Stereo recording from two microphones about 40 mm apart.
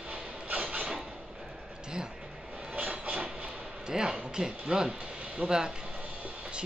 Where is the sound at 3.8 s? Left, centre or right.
Centre.